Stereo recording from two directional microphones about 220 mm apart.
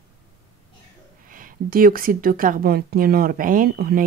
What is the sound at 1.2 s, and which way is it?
A woman's voice, 40° right (ahead or behind).